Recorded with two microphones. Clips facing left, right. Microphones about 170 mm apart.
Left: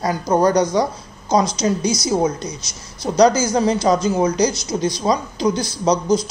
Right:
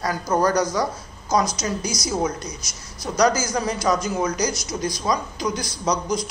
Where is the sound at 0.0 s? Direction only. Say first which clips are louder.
Left 4 dB; 25° left (ahead or behind).